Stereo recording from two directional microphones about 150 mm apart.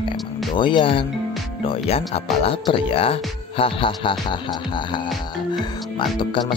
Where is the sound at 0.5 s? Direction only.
35° left (ahead or behind).